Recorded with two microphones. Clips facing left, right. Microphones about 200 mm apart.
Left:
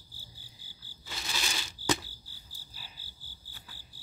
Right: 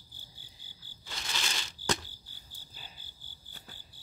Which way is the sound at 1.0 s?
5° left (ahead or behind).